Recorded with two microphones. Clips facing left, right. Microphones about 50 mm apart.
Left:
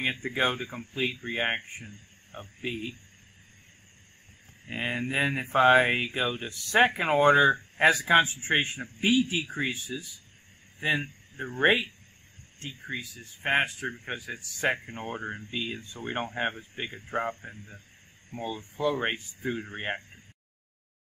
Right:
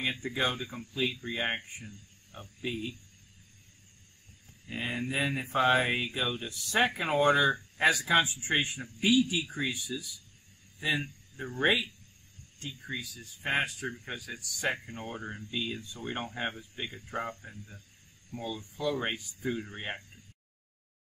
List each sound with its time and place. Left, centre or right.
0.1 s speech: left
4.6 s speech: left